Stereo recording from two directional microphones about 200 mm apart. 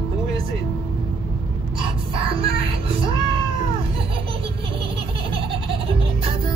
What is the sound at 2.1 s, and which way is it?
Music, 25° right (ahead or behind).